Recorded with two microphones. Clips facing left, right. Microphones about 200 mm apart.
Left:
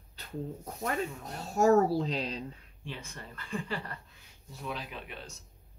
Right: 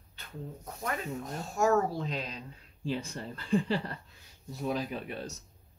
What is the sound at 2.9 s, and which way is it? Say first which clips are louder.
Speech: right 9 dB; 35° right (ahead or behind).